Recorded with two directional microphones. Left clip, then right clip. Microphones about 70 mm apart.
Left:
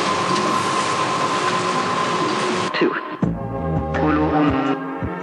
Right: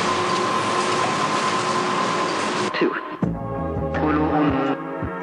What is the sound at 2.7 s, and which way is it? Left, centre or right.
Music, left.